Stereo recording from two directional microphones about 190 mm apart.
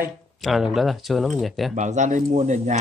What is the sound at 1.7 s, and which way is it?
Cutlery, 40° right (ahead or behind).